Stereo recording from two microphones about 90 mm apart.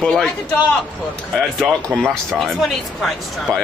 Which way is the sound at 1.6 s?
5° left (ahead or behind).